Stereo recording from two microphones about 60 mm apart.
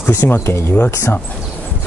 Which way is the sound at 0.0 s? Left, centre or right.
Left.